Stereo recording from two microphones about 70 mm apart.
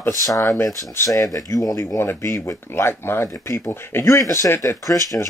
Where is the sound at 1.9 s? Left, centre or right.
Left.